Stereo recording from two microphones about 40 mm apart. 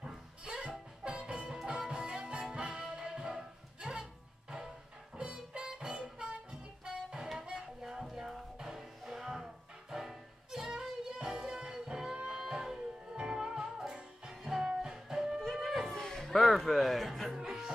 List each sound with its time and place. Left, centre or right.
0.5 s music: right
7.8 s music: centre
15.5 s music: centre
15.9 s a sound: centre
16.3 s speech: centre
17.4 s music: centre